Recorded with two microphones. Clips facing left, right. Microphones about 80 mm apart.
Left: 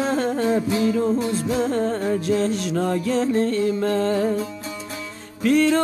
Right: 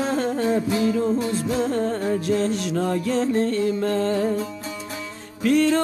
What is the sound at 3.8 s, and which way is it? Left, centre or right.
Music, left.